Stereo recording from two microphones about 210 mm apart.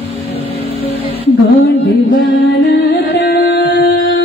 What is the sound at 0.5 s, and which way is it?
Music, 30° left (ahead or behind).